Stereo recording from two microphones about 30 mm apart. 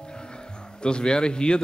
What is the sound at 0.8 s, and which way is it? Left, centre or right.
Speech, left.